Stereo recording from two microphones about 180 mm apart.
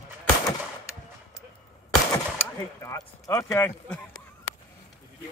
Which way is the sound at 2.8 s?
20° left (ahead or behind).